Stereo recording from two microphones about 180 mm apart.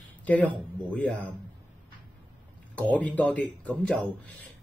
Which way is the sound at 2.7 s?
10° left (ahead or behind).